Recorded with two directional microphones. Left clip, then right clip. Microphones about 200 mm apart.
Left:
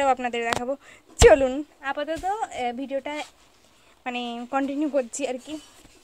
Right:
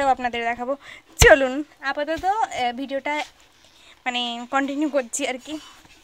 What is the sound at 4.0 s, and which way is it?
Speech, 15° left (ahead or behind).